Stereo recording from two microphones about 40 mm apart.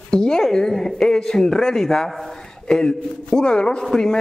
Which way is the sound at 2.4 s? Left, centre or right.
Centre.